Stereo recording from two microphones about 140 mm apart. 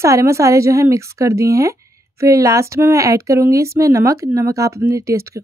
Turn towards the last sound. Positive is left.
turn(degrees=-20)  # may be behind; listen again after turning